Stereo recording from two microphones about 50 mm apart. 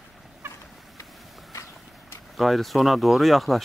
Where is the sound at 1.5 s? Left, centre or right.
Left.